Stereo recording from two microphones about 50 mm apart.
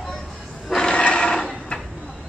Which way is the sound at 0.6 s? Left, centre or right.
Centre.